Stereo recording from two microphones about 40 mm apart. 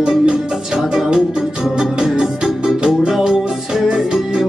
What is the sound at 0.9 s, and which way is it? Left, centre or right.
Music, centre.